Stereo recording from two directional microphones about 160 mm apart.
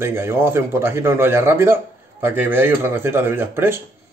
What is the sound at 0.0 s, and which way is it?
A man's voice, 15° right (ahead or behind).